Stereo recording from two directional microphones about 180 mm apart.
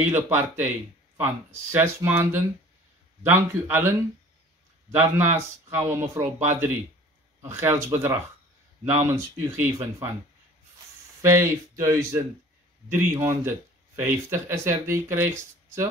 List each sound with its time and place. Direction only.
0.0 s speech: 10° right (ahead or behind)
4.9 s speech: 15° right (ahead or behind)
11.2 s speech: 15° right (ahead or behind)